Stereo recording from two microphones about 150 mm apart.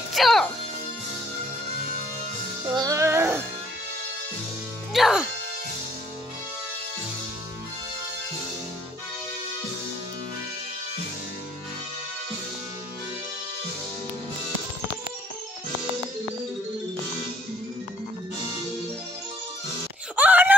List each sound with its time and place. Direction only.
0.1 s speech: centre (ahead or behind)
2.7 s music: 25° right (ahead or behind)
4.9 s music: 5° right (ahead or behind)
20.2 s a sound: 10° right (ahead or behind)